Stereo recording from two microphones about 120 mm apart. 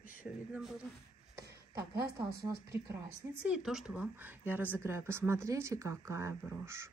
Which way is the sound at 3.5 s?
5° right (ahead or behind).